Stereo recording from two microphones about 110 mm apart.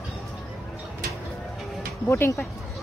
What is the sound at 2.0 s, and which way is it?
Speech, 20° left (ahead or behind).